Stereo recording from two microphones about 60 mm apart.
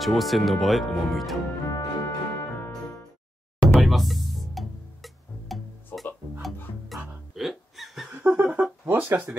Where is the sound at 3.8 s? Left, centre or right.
Centre.